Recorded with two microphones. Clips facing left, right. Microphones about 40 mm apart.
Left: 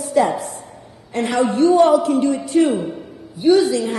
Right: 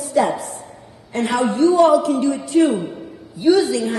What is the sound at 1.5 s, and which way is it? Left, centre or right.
Speech, left.